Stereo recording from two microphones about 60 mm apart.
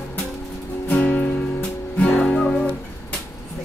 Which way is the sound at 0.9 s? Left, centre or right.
Left.